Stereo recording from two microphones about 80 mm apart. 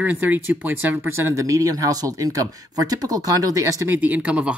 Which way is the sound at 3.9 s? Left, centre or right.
Right.